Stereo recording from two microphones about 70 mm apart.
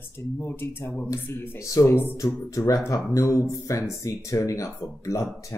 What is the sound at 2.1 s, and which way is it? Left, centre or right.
Speech, left.